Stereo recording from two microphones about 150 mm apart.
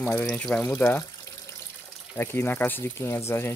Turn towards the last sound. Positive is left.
turn(degrees=15)  # may be behind; listen again after turning